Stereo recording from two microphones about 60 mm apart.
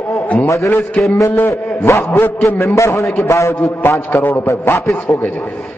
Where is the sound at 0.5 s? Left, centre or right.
Left.